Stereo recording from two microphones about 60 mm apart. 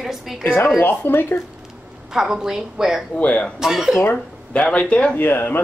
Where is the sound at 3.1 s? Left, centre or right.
Left.